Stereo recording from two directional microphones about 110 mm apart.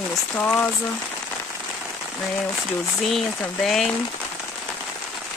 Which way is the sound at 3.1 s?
Centre (ahead or behind).